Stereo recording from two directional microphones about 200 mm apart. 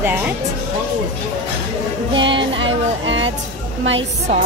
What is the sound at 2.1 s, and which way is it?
Music, 25° right (ahead or behind).